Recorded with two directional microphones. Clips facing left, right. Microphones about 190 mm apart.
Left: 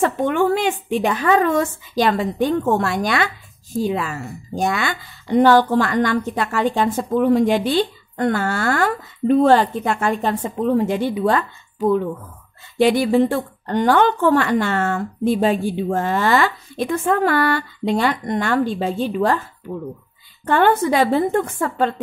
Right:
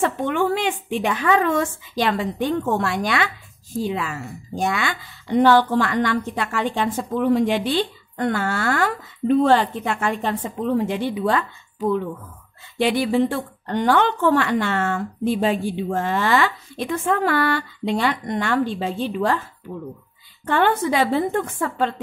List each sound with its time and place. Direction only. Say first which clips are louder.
0.0 s a woman's voice: left 3 dB; 45° left (ahead or behind)
20.4 s a woman's voice: left 3 dB; 45° left (ahead or behind)